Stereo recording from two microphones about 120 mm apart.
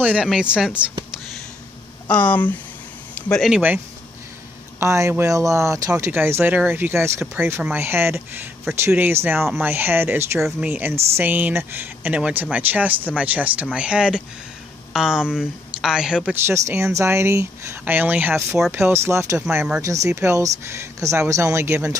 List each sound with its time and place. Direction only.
0.0 s speech: 10° right (ahead or behind)
2.0 s speech: 10° left (ahead or behind)
3.3 s speech: centre (ahead or behind)
4.7 s speech: 25° right (ahead or behind); by 16.3 s 5° right (ahead or behind)
16.3 s speech: 20° right (ahead or behind)
19.8 s speech: 25° right (ahead or behind)